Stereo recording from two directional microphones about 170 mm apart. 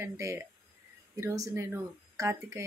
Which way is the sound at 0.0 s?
15° right (ahead or behind).